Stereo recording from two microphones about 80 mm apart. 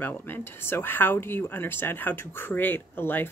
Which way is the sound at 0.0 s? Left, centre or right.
Left.